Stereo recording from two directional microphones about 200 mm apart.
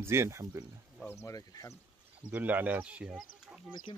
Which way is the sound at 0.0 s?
15° right (ahead or behind).